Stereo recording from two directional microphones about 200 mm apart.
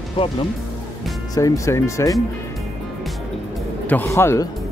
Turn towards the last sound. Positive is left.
turn(degrees=15)  # may be behind; listen again after turning